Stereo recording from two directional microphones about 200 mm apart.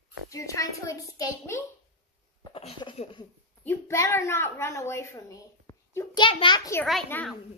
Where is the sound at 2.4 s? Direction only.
25° left (ahead or behind).